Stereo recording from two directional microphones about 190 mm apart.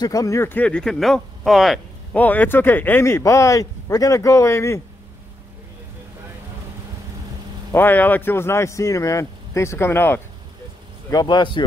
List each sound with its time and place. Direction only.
0.0 s speech: 15° left (ahead or behind)
7.7 s speech: 10° left (ahead or behind)
11.1 s speech: 20° left (ahead or behind)